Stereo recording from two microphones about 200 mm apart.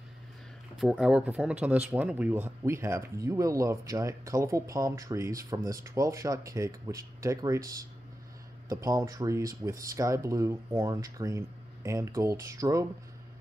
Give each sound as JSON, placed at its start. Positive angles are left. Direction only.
{"t": 0.7, "sound": "speech", "side_deg": 0}